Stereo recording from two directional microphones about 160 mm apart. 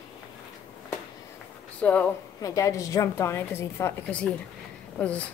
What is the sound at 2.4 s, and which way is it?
A woman's voice, 20° left (ahead or behind).